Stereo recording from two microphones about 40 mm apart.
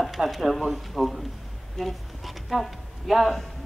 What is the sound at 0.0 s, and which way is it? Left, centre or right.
A man's voice, centre.